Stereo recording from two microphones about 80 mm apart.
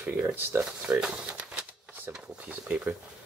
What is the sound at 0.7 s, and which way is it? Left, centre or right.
Speech, centre.